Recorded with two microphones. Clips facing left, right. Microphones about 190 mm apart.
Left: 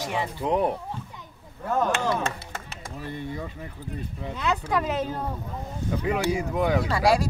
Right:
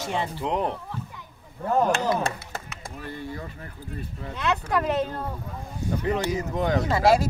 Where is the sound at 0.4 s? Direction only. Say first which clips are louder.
Left 5 dB; 15° left (ahead or behind).